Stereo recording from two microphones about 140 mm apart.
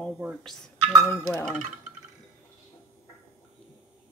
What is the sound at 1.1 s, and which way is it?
Speech, 20° left (ahead or behind).